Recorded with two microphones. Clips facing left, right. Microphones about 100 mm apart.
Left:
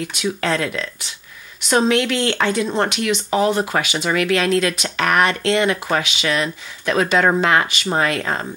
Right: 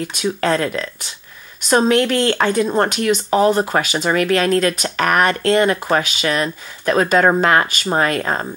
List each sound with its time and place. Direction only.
0.1 s speech: 45° right (ahead or behind)